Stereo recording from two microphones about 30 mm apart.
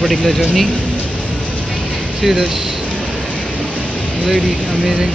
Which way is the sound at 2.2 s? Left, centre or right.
Centre.